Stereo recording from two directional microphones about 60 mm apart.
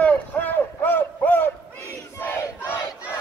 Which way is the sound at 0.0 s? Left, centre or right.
Left.